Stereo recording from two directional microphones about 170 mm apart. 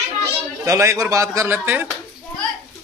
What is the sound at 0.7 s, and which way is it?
A man's voice, 20° right (ahead or behind).